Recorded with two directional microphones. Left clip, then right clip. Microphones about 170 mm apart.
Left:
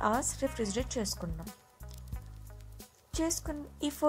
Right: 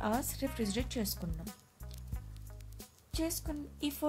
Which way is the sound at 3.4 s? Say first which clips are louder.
Left 2 dB; 10° left (ahead or behind).